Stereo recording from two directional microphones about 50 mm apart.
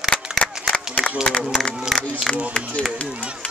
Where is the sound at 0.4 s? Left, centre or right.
Left.